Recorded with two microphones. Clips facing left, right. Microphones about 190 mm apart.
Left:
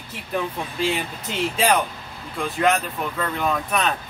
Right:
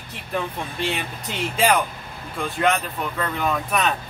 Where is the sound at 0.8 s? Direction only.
Centre (ahead or behind).